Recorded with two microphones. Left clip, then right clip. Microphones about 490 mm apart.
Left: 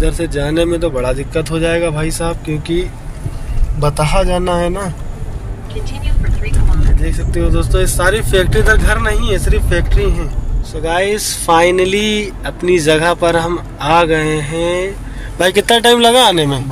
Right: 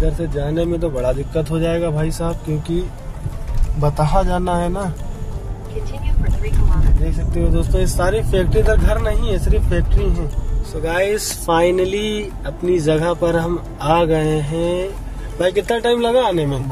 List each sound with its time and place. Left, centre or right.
0.0 s speech: right
3.8 s speech: right
7.1 s speech: right